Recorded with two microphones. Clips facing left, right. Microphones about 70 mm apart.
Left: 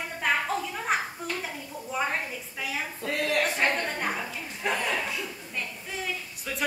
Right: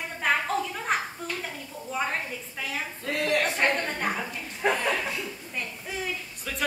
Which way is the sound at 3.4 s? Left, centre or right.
Centre.